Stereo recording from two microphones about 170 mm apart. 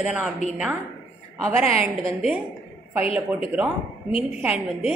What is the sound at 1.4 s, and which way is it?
Speech, 15° right (ahead or behind).